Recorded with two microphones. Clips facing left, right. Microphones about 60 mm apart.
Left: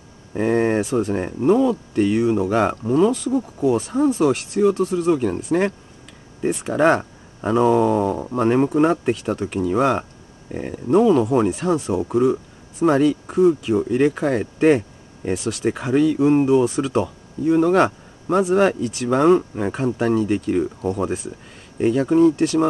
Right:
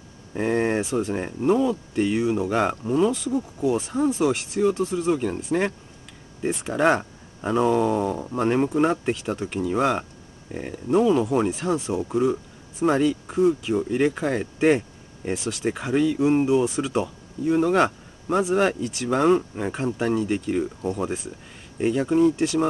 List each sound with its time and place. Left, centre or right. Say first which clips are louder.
0.3 s speech: left 4 dB; centre
3.3 s speech: left 4 dB; centre
3.6 s speech: left 4 dB; centre
21.7 s speech: left 4 dB; centre